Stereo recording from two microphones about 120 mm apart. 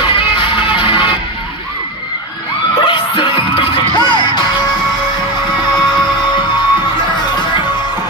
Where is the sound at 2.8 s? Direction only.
45° left (ahead or behind).